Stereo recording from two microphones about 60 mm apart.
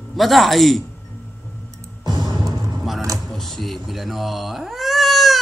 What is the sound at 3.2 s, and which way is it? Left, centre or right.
Cat, centre.